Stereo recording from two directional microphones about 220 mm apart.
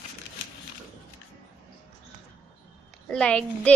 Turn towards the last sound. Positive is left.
turn(degrees=5)  # may be behind; listen again after turning